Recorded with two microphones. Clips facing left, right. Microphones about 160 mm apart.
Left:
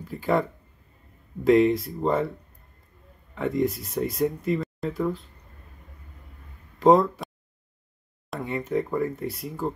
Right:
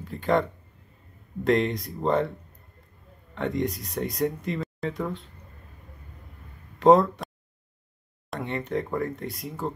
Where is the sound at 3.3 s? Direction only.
Centre (ahead or behind).